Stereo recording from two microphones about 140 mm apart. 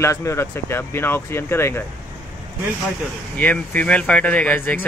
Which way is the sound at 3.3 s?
10° left (ahead or behind).